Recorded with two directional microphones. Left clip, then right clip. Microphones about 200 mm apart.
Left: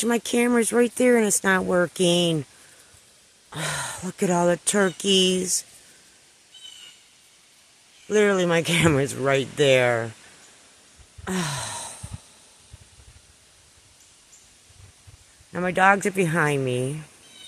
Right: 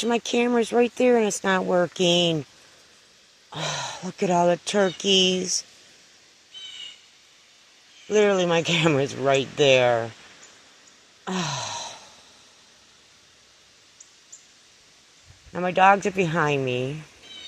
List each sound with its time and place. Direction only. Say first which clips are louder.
0.0 s speech: even; 20° left (ahead or behind)
3.4 s speech: even; 20° left (ahead or behind)
8.1 s speech: even; 20° left (ahead or behind)
11.2 s wail: right 1 dB; 20° left (ahead or behind)
15.5 s speech: right 1 dB; 20° left (ahead or behind)